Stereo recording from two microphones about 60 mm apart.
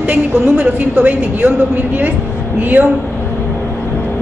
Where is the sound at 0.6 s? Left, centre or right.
Right.